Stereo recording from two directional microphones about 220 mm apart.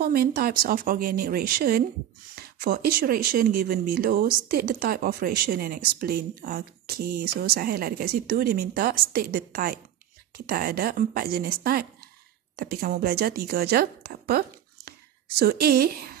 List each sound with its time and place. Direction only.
0.0 s speech: 45° right (ahead or behind)